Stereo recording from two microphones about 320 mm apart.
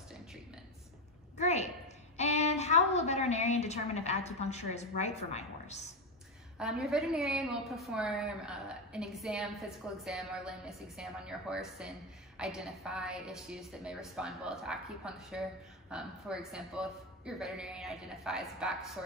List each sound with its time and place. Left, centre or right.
1.3 s a sound: left
2.1 s a woman's voice: left
6.6 s a woman's voice: centre